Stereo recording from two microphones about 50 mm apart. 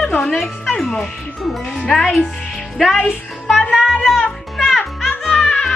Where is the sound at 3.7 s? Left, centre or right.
Centre.